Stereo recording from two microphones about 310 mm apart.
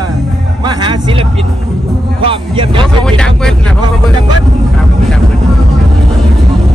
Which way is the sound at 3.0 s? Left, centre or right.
Centre.